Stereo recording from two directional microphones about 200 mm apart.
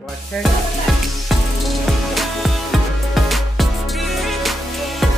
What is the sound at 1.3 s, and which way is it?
Music, centre (ahead or behind).